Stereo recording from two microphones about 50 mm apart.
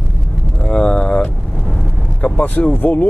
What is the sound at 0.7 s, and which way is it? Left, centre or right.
Speech, left.